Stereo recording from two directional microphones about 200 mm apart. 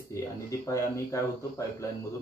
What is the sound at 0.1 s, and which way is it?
Speech, 15° left (ahead or behind).